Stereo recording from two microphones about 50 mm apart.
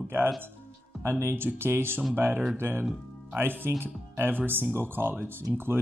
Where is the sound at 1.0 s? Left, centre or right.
Right.